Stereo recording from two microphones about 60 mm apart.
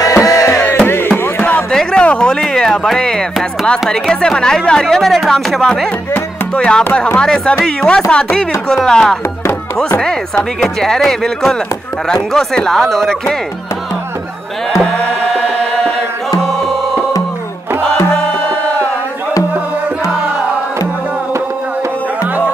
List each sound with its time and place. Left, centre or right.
0.0 s music: left
0.7 s music: left
1.7 s a sound: centre
2.4 s speech: centre
6.5 s music: centre
7.2 s speech: centre
16.3 s music: centre